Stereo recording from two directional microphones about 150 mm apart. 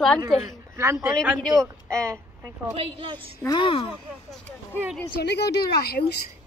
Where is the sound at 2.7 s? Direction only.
40° right (ahead or behind).